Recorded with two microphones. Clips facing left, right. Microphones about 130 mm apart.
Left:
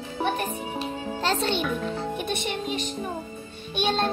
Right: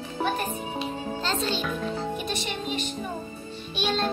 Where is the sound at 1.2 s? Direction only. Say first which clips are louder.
Left 4 dB; 65° left (ahead or behind).